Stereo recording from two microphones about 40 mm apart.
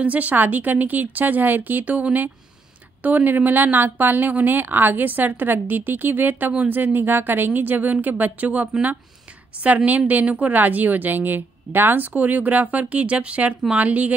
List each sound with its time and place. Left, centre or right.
0.0 s a woman's voice: right